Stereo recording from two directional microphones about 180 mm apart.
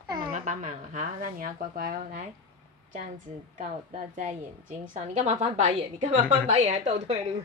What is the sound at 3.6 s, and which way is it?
A woman's voice, 45° right (ahead or behind).